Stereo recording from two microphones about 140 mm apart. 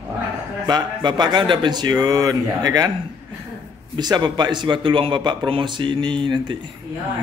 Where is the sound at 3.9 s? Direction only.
30° right (ahead or behind).